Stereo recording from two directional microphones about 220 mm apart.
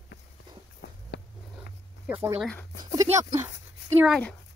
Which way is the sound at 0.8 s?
45° left (ahead or behind).